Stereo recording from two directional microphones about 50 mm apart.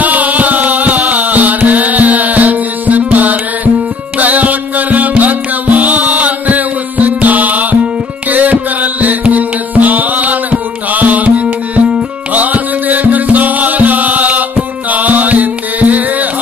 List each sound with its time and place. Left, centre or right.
0.0 s music: right